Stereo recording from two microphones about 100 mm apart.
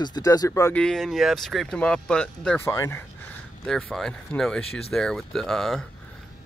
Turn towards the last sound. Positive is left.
turn(degrees=5)  # may be behind; listen again after turning